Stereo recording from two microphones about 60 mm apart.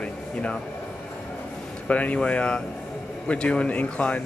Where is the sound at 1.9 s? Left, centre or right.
Left.